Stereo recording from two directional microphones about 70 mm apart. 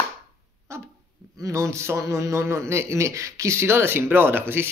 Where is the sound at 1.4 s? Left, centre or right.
Right.